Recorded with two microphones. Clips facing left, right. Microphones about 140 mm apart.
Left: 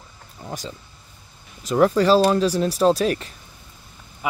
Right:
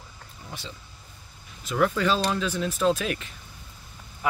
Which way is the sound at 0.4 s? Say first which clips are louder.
Left 8 dB; 45° left (ahead or behind).